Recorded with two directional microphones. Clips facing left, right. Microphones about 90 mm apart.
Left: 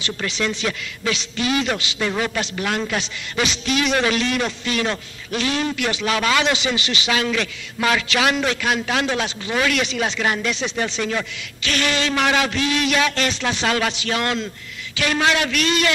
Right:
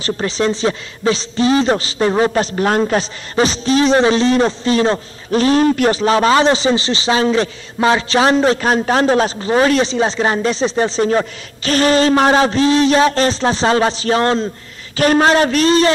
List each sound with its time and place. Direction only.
0.0 s a man's voice: 35° right (ahead or behind)